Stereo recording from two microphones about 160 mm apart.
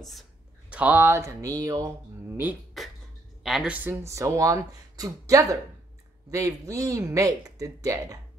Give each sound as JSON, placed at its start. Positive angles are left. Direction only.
{"t": 0.7, "sound": "speech", "side_deg": -10}
{"t": 2.8, "sound": "beatboxing", "side_deg": 0}
{"t": 3.4, "sound": "speech", "side_deg": -5}